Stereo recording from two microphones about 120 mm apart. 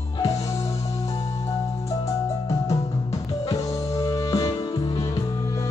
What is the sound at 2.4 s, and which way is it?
Music, 25° left (ahead or behind).